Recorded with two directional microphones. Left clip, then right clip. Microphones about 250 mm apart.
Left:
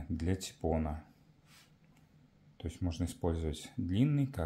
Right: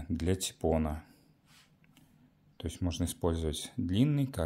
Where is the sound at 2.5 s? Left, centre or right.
Right.